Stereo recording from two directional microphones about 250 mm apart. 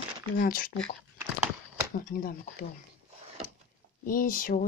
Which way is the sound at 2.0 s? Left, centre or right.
Left.